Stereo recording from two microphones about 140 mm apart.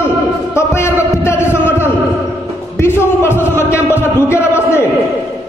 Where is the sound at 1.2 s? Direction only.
15° left (ahead or behind).